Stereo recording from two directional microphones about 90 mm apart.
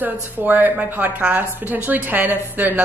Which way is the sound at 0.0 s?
20° right (ahead or behind).